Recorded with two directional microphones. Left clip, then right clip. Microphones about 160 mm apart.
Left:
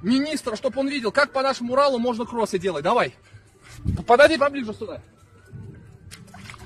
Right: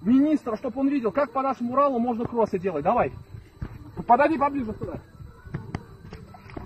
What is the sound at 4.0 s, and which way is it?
Speech, 50° left (ahead or behind).